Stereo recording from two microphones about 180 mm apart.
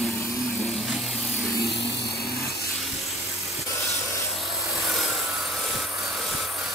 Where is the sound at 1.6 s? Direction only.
70° left (ahead or behind).